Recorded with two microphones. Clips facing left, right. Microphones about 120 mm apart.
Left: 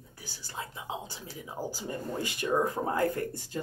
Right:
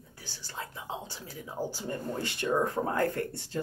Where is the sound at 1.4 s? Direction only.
10° left (ahead or behind).